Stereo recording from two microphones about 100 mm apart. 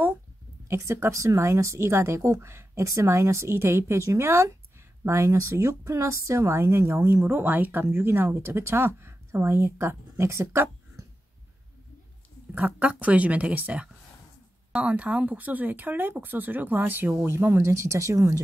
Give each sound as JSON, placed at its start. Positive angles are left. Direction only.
{"t": 0.7, "sound": "speech", "side_deg": -30}
{"t": 12.5, "sound": "speech", "side_deg": -15}